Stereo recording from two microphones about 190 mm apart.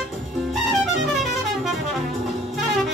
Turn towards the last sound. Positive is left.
turn(degrees=0)  # may be behind; listen again after turning